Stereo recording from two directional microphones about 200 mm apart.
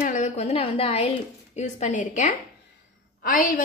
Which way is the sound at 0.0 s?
40° left (ahead or behind).